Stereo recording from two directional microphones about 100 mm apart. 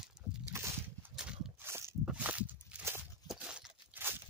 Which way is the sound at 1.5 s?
25° right (ahead or behind).